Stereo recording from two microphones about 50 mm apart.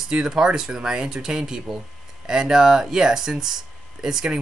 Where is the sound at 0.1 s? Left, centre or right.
Centre.